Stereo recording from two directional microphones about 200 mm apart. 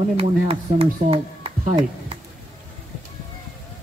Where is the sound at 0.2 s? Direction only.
30° right (ahead or behind).